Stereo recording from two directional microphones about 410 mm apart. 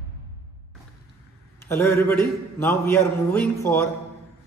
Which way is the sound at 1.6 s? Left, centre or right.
Centre.